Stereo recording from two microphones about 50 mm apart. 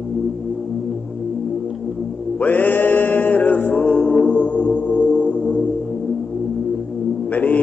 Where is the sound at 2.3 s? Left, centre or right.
Left.